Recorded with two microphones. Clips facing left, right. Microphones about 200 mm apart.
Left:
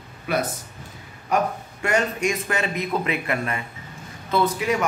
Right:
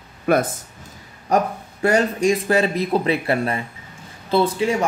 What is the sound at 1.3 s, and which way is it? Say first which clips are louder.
A man's voice: right 3 dB; 35° right (ahead or behind).